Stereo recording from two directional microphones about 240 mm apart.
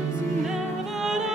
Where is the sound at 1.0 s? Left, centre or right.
Centre.